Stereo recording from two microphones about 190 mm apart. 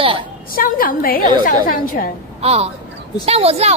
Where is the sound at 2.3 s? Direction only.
35° right (ahead or behind).